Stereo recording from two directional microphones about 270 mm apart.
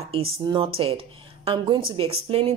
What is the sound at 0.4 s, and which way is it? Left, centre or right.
A woman's voice, centre.